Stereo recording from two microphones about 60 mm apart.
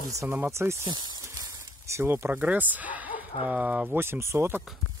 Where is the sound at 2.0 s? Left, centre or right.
Right.